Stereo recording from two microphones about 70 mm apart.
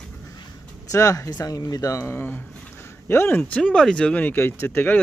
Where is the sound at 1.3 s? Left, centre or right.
Left.